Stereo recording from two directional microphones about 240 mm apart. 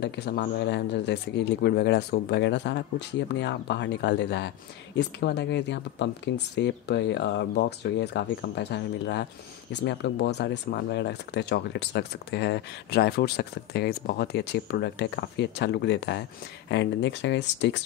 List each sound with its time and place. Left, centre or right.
0.0 s speech: left